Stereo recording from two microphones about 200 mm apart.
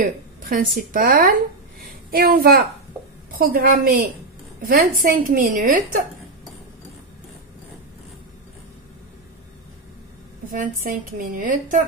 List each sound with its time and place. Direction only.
0.0 s a woman's voice: 45° right (ahead or behind)
10.5 s a woman's voice: 40° right (ahead or behind)